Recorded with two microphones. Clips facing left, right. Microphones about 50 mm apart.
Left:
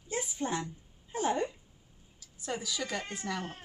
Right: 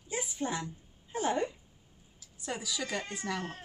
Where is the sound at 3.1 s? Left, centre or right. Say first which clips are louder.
Right 1 dB; centre.